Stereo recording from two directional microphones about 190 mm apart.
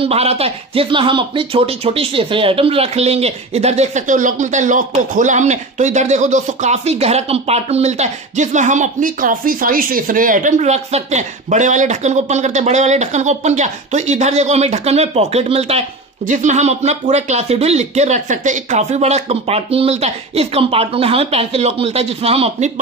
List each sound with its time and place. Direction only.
0.0 s speech: 30° right (ahead or behind)